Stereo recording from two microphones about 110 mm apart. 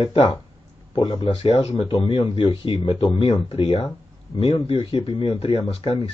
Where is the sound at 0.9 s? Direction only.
55° left (ahead or behind).